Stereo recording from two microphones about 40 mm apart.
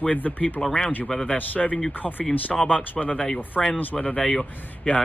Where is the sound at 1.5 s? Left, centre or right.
Left.